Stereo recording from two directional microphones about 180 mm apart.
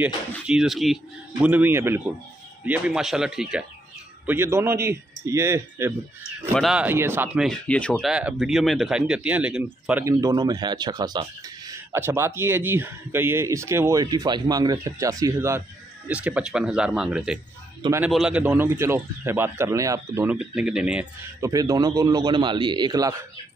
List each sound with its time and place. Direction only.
0.0 s speech: 5° right (ahead or behind)
4.3 s speech: 15° right (ahead or behind)
6.5 s speech: centre (ahead or behind)
7.4 s speech: 5° left (ahead or behind)
10.0 s speech: 20° right (ahead or behind)
16.1 s speech: 5° right (ahead or behind)
21.4 s a man's voice: 20° right (ahead or behind)